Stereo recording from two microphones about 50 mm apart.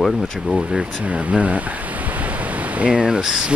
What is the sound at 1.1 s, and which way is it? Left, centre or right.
Speech, centre.